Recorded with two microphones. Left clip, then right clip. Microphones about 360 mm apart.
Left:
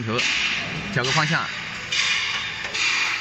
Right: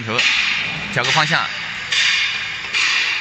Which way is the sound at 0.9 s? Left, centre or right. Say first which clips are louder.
Right 5 dB; right.